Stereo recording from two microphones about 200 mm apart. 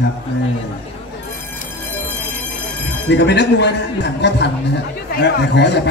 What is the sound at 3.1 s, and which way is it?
A man's voice, 60° left (ahead or behind).